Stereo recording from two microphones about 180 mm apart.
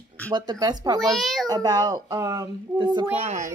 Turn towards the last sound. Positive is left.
turn(degrees=-40)  # may be behind; listen again after turning